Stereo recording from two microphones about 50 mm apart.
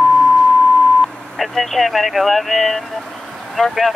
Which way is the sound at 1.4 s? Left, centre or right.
Centre.